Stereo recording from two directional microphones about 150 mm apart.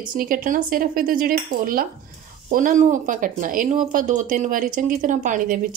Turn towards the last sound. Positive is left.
turn(degrees=-65)  # may be behind; listen again after turning